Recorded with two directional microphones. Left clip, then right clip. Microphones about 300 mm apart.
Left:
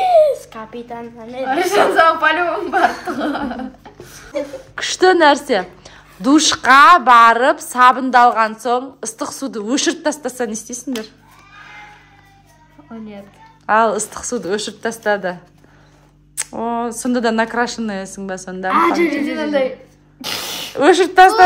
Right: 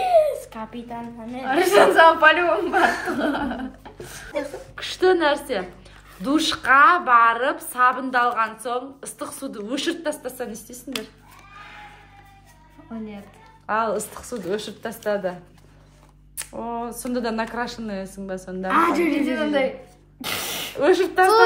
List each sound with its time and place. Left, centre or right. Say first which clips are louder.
0.0 s babbling: left 6 dB; left
1.4 s speech: left 1 dB; centre
4.3 s a woman's voice: left 5 dB; left
11.6 s a sound: left 5 dB; centre
13.7 s speech: left 9 dB; left
16.3 s speech: left 8 dB; left
20.2 s throat clearing: left 4 dB; centre
20.7 s speech: left 8 dB; left